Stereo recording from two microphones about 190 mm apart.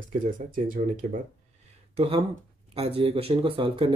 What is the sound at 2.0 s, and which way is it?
Speech, 30° right (ahead or behind).